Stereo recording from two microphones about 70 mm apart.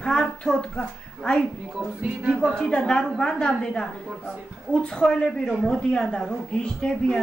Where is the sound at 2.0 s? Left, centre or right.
Centre.